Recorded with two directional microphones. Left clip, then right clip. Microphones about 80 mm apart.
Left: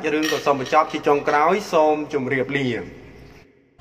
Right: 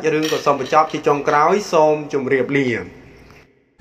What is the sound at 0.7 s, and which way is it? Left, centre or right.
Speech, right.